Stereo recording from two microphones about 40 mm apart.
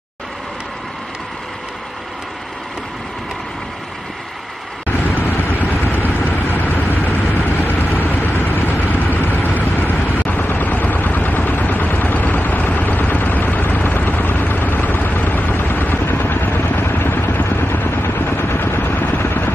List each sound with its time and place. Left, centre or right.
4.8 s vehicle: left
16.5 s vehicle: left
17.5 s vehicle: left
17.7 s vehicle: left